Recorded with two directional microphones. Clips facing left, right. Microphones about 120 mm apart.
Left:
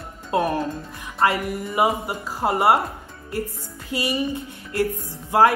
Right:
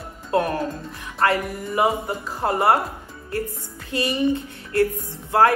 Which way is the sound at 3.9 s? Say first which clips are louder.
Right 2 dB; 15° left (ahead or behind).